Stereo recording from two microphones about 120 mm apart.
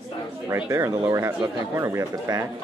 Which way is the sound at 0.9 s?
35° right (ahead or behind).